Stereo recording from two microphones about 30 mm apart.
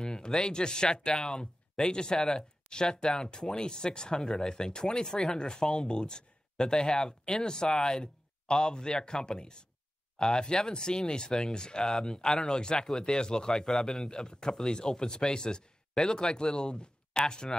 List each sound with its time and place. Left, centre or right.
0.0 s speech: left
4.2 s speech: centre
4.5 s speech: left
11.8 s speech: centre
12.1 s speech: centre
14.0 s speech: left